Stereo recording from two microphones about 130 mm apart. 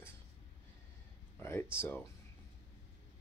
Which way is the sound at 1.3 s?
15° left (ahead or behind).